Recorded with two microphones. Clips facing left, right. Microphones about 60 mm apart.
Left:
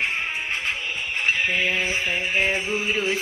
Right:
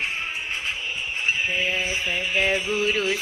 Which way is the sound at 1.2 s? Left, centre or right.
Left.